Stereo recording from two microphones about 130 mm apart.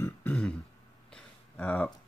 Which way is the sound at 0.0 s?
15° left (ahead or behind).